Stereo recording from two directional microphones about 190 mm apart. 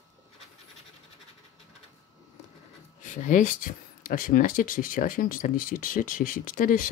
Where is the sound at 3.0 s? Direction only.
40° left (ahead or behind).